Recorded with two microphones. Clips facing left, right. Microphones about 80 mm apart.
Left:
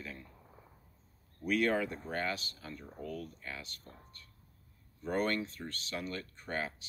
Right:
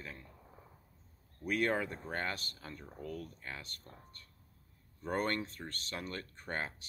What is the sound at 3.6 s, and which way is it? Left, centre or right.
Speech, right.